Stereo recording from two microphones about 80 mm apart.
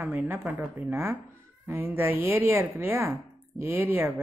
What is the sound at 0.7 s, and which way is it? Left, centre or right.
A woman's voice, right.